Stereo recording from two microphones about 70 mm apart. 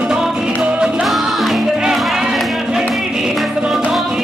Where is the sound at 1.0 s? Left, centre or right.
Centre.